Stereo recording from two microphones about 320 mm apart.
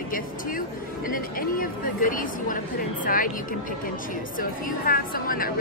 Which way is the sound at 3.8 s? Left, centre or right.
Left.